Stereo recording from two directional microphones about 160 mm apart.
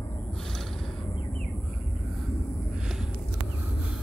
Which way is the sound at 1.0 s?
30° left (ahead or behind).